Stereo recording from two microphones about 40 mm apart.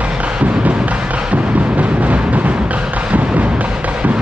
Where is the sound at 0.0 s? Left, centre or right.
Right.